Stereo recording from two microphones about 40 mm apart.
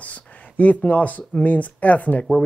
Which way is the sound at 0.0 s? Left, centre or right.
Left.